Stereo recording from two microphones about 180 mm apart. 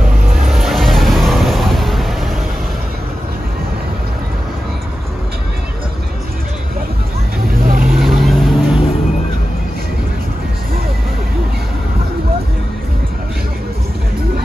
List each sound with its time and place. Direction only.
0.5 s vehicle: centre (ahead or behind)
7.6 s vehicle: 50° right (ahead or behind)
7.9 s vehicle: centre (ahead or behind)